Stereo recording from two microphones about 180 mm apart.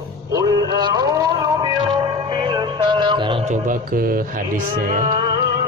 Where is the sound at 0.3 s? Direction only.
20° right (ahead or behind); by 4.9 s 50° right (ahead or behind).